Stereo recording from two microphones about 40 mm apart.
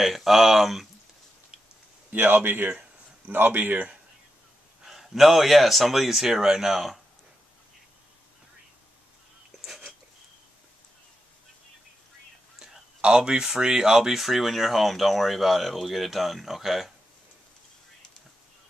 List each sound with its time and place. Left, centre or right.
0.0 s speech: centre
2.1 s speech: right
4.8 s speech: centre
9.7 s a sound: centre
13.0 s speech: right; by 16.9 s centre